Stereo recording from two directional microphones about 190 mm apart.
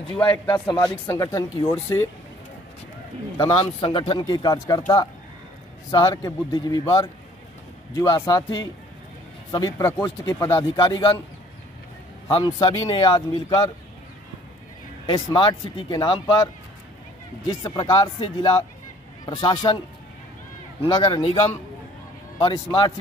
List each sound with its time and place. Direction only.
0.5 s speech: 20° left (ahead or behind)
3.3 s speech: 25° left (ahead or behind)
12.3 s speech: 25° left (ahead or behind)
15.0 s speech: 20° left (ahead or behind)
17.5 s speech: 20° left (ahead or behind)
20.8 s speech: 25° left (ahead or behind)